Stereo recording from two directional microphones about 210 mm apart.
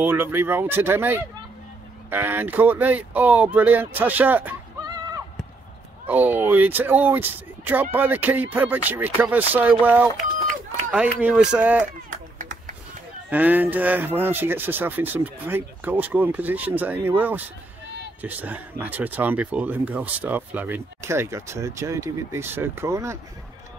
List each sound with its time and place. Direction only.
0.0 s speech: 10° right (ahead or behind)
12.1 s a sound: 40° right (ahead or behind)
13.3 s speech: 10° right (ahead or behind)